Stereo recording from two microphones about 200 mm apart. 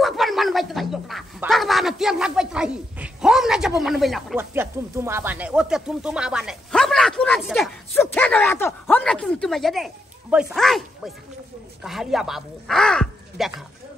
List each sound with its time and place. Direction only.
0.0 s speech: centre (ahead or behind)
4.4 s speech: 10° right (ahead or behind)